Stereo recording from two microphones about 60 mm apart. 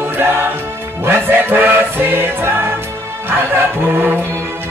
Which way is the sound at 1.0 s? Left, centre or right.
Right.